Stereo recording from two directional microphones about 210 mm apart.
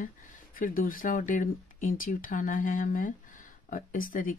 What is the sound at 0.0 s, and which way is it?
Speech, 40° left (ahead or behind).